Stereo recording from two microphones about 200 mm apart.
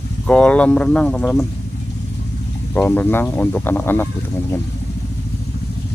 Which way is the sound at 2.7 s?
10° left (ahead or behind).